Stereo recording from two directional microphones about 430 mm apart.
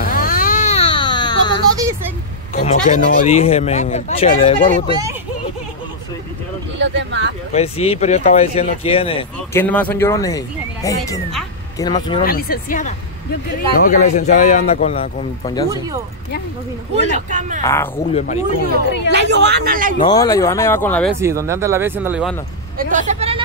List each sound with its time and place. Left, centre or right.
0.0 s baby cry: centre
2.5 s speech: centre
6.8 s a sound: right
7.5 s speech: centre
12.2 s speech: left
17.1 s speech: centre
17.6 s speech: centre
18.2 s speech: centre
19.0 s speech: right
20.0 s speech: centre
21.2 s speech: centre
22.8 s speech: centre